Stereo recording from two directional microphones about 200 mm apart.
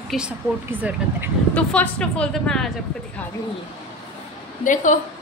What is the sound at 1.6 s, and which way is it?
A woman's voice, 5° left (ahead or behind).